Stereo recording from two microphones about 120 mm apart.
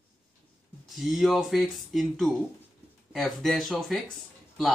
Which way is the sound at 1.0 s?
Centre (ahead or behind).